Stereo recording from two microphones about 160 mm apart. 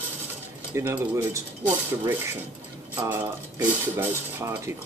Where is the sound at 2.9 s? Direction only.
15° right (ahead or behind).